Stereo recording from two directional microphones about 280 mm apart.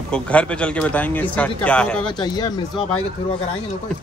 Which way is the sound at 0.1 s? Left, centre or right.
Centre.